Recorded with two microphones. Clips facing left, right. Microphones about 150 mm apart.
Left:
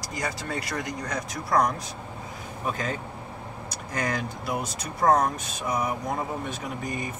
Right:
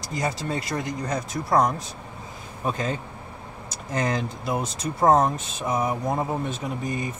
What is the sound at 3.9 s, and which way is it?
Speech, 25° right (ahead or behind).